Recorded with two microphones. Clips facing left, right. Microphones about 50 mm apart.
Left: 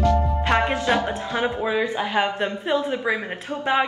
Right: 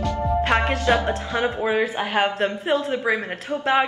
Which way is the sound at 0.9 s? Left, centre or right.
Centre.